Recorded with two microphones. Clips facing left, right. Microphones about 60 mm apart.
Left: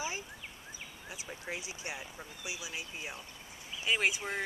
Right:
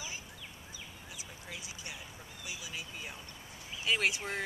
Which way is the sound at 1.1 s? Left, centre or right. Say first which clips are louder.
Left 7 dB; left.